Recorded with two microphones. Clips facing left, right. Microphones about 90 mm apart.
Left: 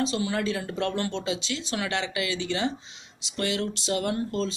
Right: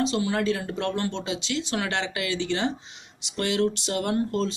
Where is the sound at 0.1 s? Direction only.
40° right (ahead or behind).